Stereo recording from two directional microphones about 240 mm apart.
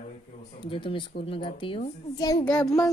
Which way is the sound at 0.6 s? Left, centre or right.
Left.